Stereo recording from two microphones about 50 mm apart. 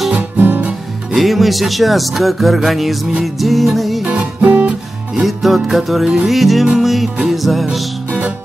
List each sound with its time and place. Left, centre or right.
0.4 s guitar: right
1.1 s speech: centre
4.0 s music: right
5.2 s speech: centre
7.2 s music: centre